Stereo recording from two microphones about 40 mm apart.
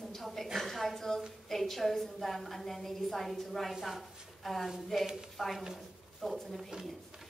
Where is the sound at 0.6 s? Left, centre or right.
Centre.